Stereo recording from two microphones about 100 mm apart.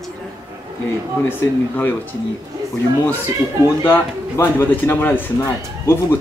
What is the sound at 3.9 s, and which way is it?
Speech, 20° left (ahead or behind).